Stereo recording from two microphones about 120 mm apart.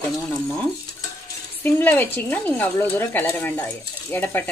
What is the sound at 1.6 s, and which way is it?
Speech, 15° left (ahead or behind).